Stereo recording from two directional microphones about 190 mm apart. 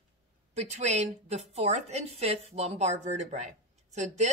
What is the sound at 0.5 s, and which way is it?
A woman's voice, 35° right (ahead or behind).